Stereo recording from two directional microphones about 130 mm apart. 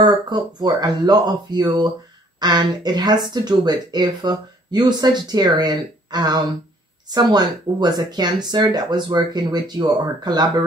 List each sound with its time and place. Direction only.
0.0 s speech: 30° right (ahead or behind)